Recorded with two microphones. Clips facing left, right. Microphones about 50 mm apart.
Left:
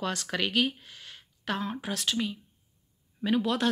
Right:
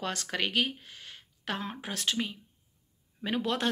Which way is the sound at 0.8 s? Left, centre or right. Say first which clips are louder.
Even; right.